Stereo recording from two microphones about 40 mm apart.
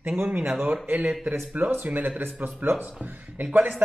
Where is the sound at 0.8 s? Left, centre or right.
Right.